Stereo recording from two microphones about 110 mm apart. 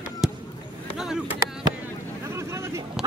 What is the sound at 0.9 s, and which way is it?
Vehicle, 5° right (ahead or behind).